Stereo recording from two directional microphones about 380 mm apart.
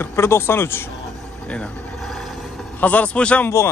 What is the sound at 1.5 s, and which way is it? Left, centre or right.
Vehicle, centre.